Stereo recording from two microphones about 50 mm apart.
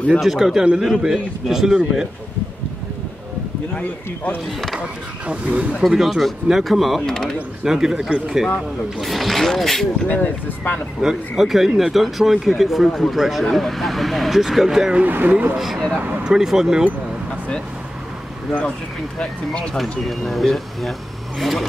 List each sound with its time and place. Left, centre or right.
0.1 s a man's voice: centre
3.7 s speech: left
4.7 s speech: right
5.8 s speech: centre
7.0 s speech: centre
7.6 s a man's voice: centre
10.0 s speech: left
11.0 s speech: centre
15.0 s speech: right
15.5 s a man's voice: centre
19.1 s speech: centre
19.8 s speech: centre